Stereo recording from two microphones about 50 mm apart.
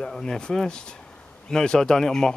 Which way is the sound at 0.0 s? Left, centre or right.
Centre.